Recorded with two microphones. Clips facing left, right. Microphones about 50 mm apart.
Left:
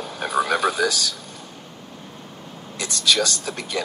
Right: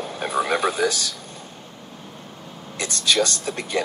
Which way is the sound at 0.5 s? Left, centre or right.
Right.